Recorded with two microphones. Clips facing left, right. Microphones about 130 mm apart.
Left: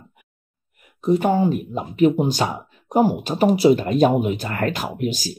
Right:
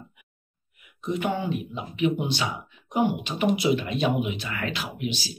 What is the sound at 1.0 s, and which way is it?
Speech, 35° left (ahead or behind).